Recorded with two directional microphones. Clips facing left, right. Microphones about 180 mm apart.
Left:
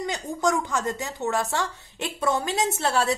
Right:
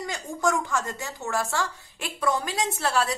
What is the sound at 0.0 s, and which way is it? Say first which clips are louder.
A woman's voice: left 2 dB; 20° left (ahead or behind).